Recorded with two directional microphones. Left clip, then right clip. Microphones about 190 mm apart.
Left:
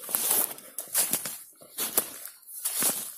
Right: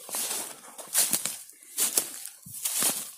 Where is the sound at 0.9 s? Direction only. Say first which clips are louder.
Right 3 dB; centre (ahead or behind).